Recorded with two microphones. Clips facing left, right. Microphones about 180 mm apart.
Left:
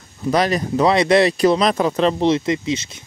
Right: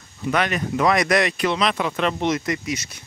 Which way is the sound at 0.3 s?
35° left (ahead or behind).